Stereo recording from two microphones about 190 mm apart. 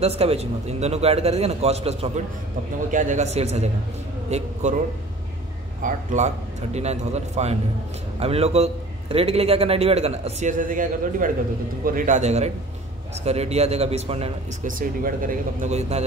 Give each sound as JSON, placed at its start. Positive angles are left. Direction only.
{"t": 0.0, "sound": "a man's voice", "side_deg": -30}
{"t": 5.8, "sound": "a man's voice", "side_deg": -40}
{"t": 14.7, "sound": "speech", "side_deg": -45}